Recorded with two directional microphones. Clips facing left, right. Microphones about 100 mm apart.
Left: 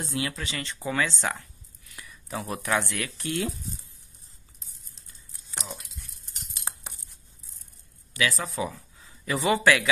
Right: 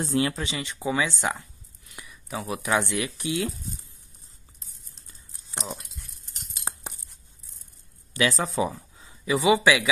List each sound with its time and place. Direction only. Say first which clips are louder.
0.0 s speech: right 6 dB; 35° right (ahead or behind)
0.5 s speech: right 3 dB; 15° right (ahead or behind)
2.2 s speech: right 1 dB; 5° right (ahead or behind)
2.8 s speech: right 4 dB; 20° right (ahead or behind)
5.5 s a sound: right 4 dB; 30° right (ahead or behind)
8.1 s speech: right 3 dB; 30° right (ahead or behind)
9.2 s speech: right 3 dB; 10° right (ahead or behind)